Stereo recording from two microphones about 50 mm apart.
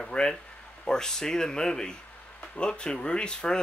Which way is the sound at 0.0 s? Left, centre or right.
Centre.